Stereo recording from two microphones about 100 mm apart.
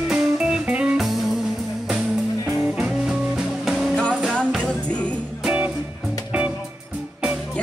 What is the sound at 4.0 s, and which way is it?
Music, 10° left (ahead or behind).